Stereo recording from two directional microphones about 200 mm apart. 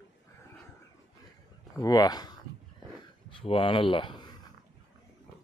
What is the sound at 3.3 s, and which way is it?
Speech, 25° left (ahead or behind).